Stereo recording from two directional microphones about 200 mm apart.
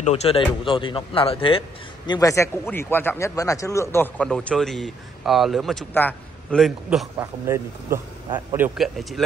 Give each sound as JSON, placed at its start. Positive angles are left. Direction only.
{"t": 0.0, "sound": "speech", "side_deg": 30}
{"t": 2.0, "sound": "speech", "side_deg": 15}
{"t": 7.2, "sound": "speech", "side_deg": -15}
{"t": 8.5, "sound": "speech", "side_deg": -5}